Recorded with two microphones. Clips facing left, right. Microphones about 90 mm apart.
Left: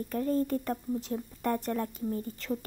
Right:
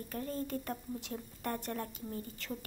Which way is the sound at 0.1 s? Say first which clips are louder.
Left 9 dB; 40° left (ahead or behind).